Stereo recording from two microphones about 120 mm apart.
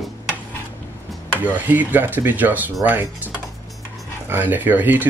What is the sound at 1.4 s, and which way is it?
Speech, 15° right (ahead or behind).